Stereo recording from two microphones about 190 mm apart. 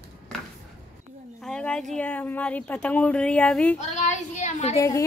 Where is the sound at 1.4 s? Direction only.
5° left (ahead or behind).